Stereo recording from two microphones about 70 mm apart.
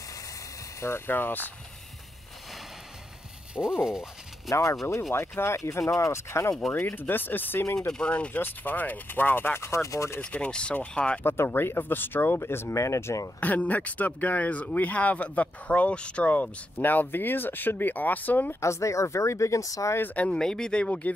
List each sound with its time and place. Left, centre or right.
0.7 s speech: left
3.5 s speech: centre
4.5 s speech: left
5.6 s speech: left
7.9 s speech: centre; by 10.2 s left
10.2 s speech: centre
11.2 s speech: left
13.4 s speech: left
18.6 s speech: left
20.2 s speech: centre